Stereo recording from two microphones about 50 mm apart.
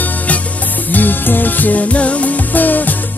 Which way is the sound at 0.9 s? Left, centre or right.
Left.